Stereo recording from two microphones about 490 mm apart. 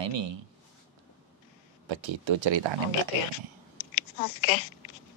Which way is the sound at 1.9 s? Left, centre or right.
Right.